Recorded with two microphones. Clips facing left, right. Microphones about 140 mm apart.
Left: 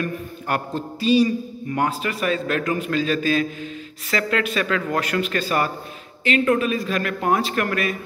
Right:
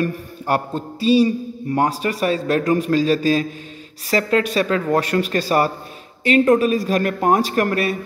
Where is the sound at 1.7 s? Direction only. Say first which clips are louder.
Right 4 dB; 35° right (ahead or behind).